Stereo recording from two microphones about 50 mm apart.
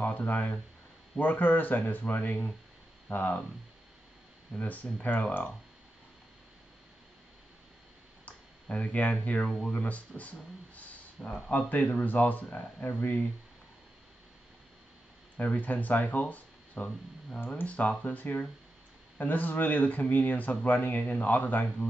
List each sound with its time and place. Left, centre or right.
0.0 s speech: left
4.6 s speech: left
8.3 s speech: left
15.3 s speech: left
17.6 s speech: left